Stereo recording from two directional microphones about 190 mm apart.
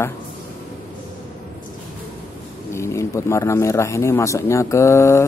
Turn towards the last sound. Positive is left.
turn(degrees=15)  # may be behind; listen again after turning